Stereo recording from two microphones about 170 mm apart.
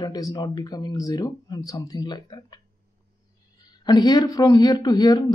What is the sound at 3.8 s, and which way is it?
Speech, 25° left (ahead or behind).